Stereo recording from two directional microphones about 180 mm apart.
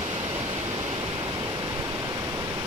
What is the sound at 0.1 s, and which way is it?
Waterfall, 30° right (ahead or behind).